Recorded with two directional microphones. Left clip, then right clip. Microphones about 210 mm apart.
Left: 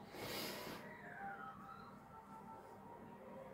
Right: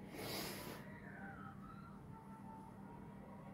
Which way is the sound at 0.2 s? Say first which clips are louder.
Even; 45° right (ahead or behind).